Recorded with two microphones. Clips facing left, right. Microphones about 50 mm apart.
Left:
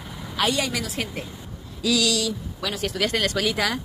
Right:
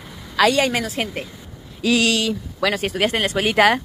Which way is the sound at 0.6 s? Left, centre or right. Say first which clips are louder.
Right 6 dB; right.